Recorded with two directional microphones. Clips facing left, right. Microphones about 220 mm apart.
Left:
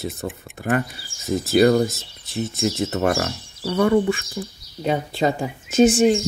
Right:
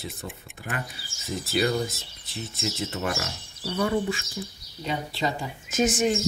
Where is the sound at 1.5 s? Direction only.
50° left (ahead or behind); by 3.8 s 75° left (ahead or behind).